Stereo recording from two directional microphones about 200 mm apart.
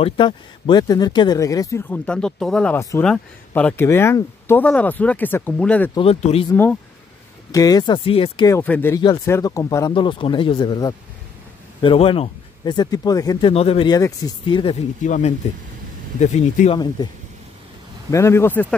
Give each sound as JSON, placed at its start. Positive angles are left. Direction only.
{"t": 0.0, "sound": "speech", "side_deg": 25}
{"t": 5.9, "sound": "speech", "side_deg": 30}
{"t": 6.5, "sound": "speech", "side_deg": 10}
{"t": 8.5, "sound": "speech", "side_deg": 10}
{"t": 15.0, "sound": "speech", "side_deg": 40}
{"t": 18.1, "sound": "speech", "side_deg": 15}